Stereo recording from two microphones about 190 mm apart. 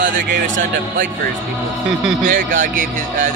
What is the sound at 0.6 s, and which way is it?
Speech, 45° right (ahead or behind).